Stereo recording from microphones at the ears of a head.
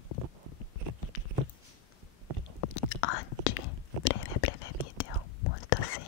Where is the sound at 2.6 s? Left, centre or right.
Left.